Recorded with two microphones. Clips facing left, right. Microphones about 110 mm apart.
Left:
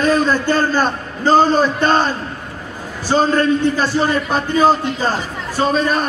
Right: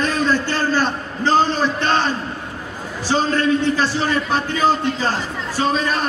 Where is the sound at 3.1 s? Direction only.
45° left (ahead or behind).